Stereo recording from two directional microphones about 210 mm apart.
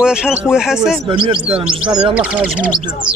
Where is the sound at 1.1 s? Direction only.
25° right (ahead or behind).